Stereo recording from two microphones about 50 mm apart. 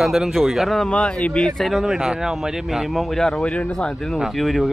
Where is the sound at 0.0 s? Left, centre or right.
Centre.